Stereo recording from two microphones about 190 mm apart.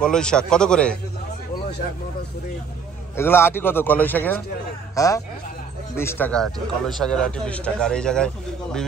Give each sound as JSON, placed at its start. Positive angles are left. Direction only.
{"t": 0.0, "sound": "speech", "side_deg": 5}
{"t": 3.2, "sound": "a man's voice", "side_deg": 10}